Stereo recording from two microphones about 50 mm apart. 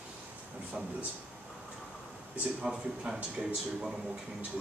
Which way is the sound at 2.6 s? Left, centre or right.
Centre.